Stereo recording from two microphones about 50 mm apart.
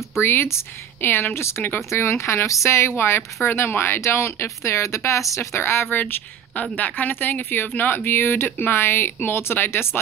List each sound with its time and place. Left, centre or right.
0.2 s speech: left
1.9 s speech: left
3.0 s speech: left
5.9 s speech: left